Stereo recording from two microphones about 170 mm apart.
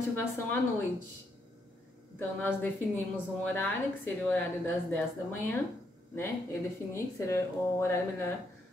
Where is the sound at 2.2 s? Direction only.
10° left (ahead or behind).